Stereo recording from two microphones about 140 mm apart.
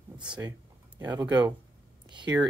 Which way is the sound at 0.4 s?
20° right (ahead or behind).